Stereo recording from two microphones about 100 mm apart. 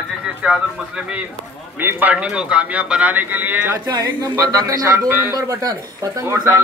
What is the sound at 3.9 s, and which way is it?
Speech, 40° right (ahead or behind).